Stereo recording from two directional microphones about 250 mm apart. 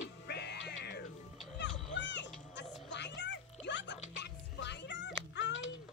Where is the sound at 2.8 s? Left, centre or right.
Left.